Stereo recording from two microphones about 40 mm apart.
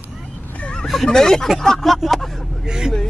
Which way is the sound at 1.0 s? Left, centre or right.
Centre.